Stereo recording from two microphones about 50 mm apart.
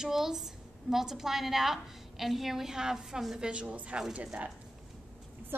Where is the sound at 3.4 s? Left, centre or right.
Right.